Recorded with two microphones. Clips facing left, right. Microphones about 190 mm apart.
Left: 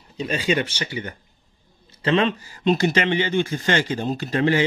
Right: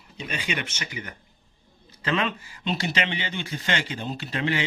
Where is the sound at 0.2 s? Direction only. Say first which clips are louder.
Left 9 dB; 35° left (ahead or behind).